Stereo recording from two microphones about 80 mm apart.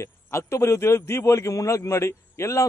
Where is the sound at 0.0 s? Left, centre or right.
Left.